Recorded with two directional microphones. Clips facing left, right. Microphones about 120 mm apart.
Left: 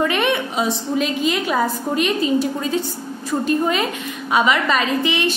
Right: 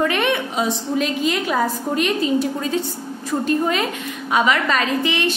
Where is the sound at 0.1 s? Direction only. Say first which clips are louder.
Left 1 dB; 15° left (ahead or behind).